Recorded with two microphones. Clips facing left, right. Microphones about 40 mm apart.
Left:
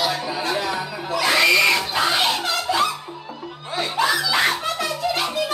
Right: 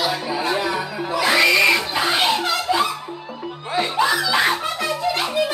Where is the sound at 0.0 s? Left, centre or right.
Centre.